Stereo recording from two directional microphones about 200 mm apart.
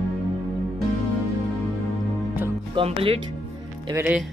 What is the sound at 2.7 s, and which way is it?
Speech, 25° right (ahead or behind).